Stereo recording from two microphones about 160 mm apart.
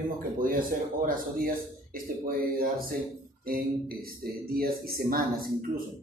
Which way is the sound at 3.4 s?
70° right (ahead or behind).